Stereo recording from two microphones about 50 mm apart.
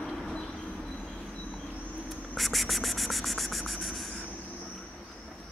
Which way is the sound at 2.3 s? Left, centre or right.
Centre.